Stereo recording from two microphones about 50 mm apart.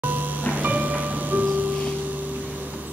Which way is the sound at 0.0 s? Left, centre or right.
Right.